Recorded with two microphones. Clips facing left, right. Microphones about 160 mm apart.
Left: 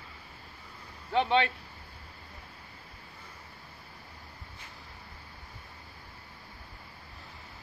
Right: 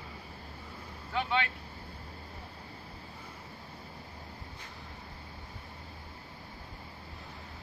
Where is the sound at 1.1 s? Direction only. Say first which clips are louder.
Left 6 dB; 25° left (ahead or behind).